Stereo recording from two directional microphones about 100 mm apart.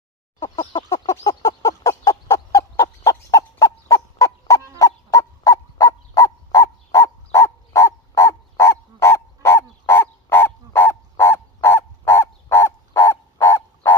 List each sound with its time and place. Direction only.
0.8 s fowl: 40° left (ahead or behind)
7.3 s bow-wow: 30° left (ahead or behind)